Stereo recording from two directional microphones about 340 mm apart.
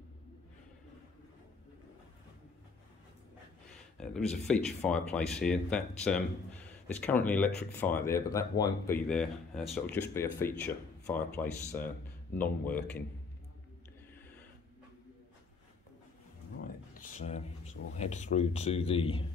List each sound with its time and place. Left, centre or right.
4.0 s speech: centre
16.6 s speech: left